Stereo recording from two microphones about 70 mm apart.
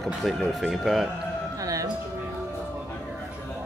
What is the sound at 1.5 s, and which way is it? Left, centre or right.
Music, right.